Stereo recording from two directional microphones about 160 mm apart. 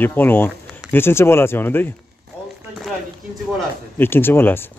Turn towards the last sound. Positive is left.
turn(degrees=15)  # may be behind; listen again after turning